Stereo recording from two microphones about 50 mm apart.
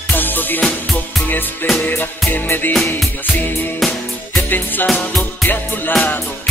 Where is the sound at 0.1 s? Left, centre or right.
Left.